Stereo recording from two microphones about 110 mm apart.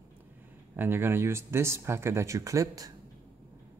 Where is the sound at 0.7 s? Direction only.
20° right (ahead or behind).